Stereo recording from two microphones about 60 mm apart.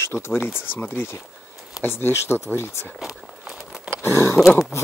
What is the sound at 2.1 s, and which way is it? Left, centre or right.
Speech, left.